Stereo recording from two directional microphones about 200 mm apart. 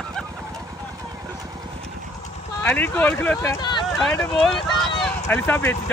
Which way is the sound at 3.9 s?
Centre (ahead or behind).